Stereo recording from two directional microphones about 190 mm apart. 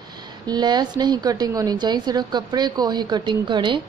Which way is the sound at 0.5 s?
20° right (ahead or behind).